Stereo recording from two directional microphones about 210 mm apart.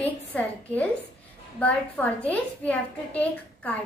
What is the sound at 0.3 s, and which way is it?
A woman's voice, 5° left (ahead or behind).